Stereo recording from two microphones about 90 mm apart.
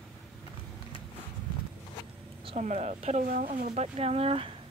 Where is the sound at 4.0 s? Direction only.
90° right.